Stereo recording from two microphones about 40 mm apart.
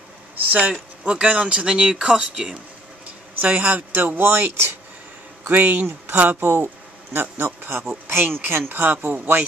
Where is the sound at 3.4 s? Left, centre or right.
Right.